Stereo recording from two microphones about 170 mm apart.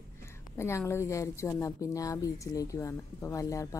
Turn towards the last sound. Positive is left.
turn(degrees=20)  # may be behind; listen again after turning